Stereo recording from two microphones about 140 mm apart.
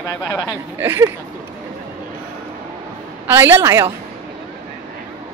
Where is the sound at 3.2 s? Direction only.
15° right (ahead or behind).